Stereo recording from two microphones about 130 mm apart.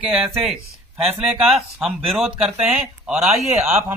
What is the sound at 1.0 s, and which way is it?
Speech, 15° right (ahead or behind).